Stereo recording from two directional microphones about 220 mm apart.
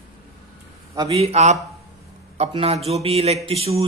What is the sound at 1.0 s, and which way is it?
Speech, 25° right (ahead or behind).